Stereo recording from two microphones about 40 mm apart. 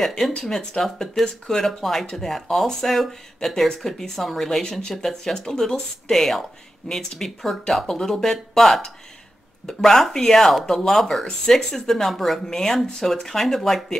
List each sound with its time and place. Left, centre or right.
0.0 s speech: centre
12.4 s speech: centre